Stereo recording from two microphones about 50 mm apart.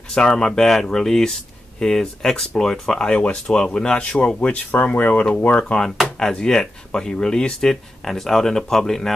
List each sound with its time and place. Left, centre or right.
0.1 s speech: centre
4.8 s speech: left
5.6 s speech: centre